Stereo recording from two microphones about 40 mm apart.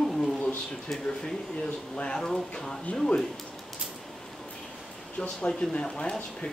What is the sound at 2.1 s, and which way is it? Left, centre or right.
Speech, centre.